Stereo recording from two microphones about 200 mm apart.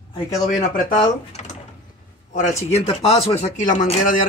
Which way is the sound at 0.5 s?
40° left (ahead or behind).